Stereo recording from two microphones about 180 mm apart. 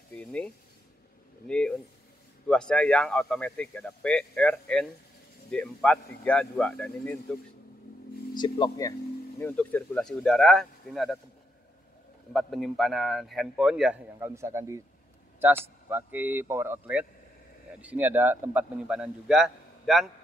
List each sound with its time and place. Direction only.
0.1 s a sound: 5° left (ahead or behind)
1.5 s a man's voice: 5° left (ahead or behind)
8.4 s speech: 20° left (ahead or behind)
9.4 s a man's voice: 10° left (ahead or behind)
12.3 s a man's voice: centre (ahead or behind)